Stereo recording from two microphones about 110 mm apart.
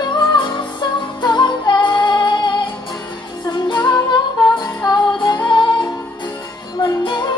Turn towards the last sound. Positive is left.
turn(degrees=45)  # may be behind; listen again after turning